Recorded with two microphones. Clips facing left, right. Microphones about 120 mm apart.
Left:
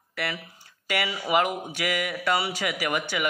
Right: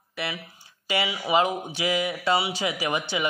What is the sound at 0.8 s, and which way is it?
Speech, 15° right (ahead or behind).